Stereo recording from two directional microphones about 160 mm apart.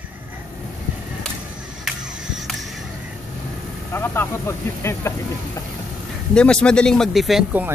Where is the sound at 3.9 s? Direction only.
15° left (ahead or behind).